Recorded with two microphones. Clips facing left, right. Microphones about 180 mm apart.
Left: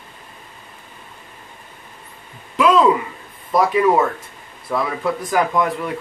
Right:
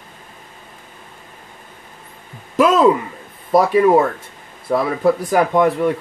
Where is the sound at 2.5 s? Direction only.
45° right (ahead or behind).